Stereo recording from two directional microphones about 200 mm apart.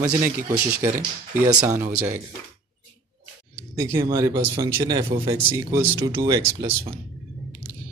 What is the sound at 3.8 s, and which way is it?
Speech, 15° right (ahead or behind).